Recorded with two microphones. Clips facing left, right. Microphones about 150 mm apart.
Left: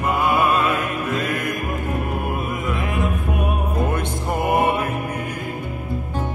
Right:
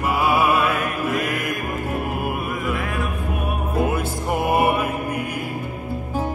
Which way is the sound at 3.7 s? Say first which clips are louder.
Right 1 dB; 5° right (ahead or behind).